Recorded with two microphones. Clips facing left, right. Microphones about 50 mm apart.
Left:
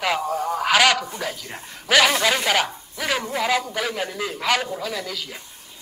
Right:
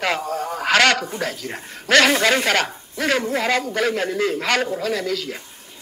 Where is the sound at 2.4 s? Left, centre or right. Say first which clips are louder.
Right 1 dB; centre.